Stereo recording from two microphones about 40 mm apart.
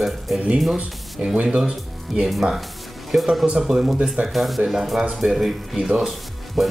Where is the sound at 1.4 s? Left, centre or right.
Centre.